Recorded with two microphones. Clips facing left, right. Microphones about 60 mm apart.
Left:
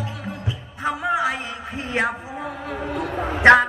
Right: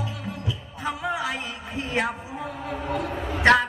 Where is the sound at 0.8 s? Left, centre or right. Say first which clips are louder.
Left 6 dB; left.